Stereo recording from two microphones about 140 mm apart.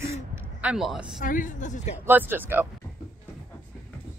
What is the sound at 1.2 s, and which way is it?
Speech, 70° left (ahead or behind).